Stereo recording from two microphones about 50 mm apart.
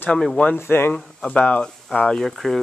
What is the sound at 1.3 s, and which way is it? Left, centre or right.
Speech, left.